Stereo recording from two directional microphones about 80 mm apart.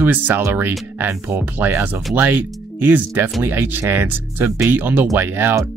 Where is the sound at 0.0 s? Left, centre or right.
Right.